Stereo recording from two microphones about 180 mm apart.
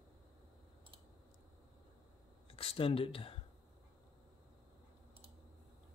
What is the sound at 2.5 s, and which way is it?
Speech, 30° left (ahead or behind).